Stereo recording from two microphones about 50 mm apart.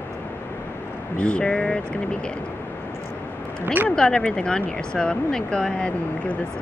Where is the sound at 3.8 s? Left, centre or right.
Centre.